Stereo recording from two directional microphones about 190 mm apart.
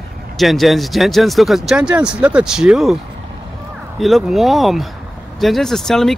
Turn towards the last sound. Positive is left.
turn(degrees=0)  # may be behind; listen again after turning